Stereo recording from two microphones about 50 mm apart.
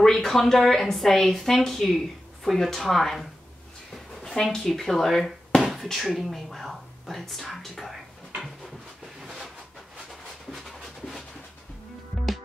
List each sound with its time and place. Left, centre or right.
0.0 s a woman's voice: centre
4.4 s a woman's voice: centre
9.2 s a sound: centre
10.2 s dog: centre